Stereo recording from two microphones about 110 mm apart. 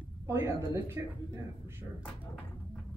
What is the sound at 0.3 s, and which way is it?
Speech, 25° right (ahead or behind).